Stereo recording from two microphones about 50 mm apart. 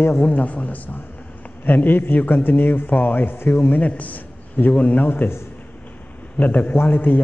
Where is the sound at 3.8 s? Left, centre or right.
Left.